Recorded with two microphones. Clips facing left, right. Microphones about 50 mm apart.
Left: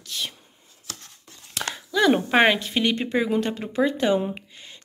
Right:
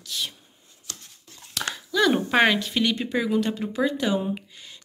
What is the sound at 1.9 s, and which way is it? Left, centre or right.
Speech, left.